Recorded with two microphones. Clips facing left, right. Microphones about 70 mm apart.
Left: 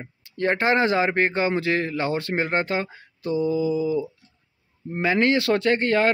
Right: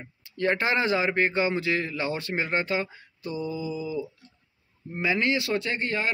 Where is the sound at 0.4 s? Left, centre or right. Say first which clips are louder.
Left 4 dB; left.